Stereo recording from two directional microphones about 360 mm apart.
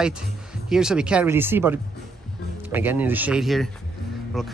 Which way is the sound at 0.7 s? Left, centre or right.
Centre.